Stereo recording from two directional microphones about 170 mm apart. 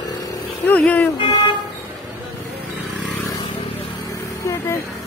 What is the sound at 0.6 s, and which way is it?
Speech, 10° left (ahead or behind).